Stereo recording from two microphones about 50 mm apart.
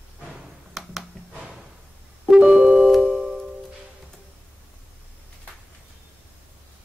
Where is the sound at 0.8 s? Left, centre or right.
Centre.